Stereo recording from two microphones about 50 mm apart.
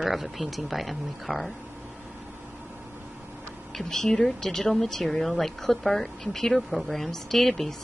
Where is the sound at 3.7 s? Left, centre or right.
Centre.